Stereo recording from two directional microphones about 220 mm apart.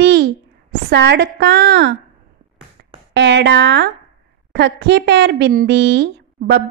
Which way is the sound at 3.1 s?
50° right (ahead or behind).